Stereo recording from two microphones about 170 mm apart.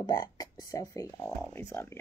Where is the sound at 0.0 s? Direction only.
20° left (ahead or behind).